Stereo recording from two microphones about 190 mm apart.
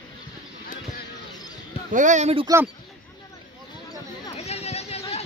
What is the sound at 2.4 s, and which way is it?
Speech, 15° right (ahead or behind).